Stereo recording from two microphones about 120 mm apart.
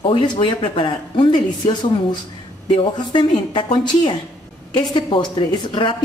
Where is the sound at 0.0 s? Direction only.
45° left (ahead or behind).